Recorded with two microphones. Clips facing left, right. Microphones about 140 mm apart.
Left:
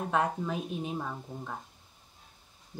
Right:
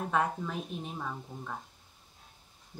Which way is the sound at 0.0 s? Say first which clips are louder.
Left 1 dB; centre (ahead or behind).